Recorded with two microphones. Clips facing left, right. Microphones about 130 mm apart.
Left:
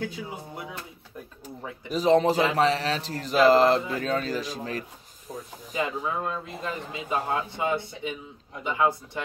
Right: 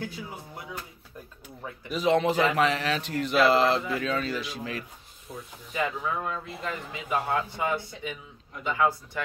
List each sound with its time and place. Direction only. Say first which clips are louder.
1.4 s a man's voice: left 2 dB; 40° left (ahead or behind)
5.3 s snake: left 3 dB; 40° left (ahead or behind)
5.8 s speech: left 1 dB; 25° left (ahead or behind)